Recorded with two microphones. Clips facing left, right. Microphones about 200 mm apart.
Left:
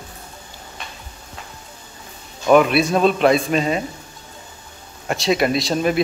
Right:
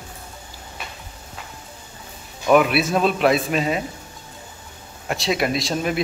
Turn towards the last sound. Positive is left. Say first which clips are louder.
# left 4 dB
turn(degrees=0)  # may be behind; listen again after turning